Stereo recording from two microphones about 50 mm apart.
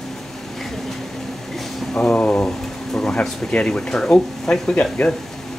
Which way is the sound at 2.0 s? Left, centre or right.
Left.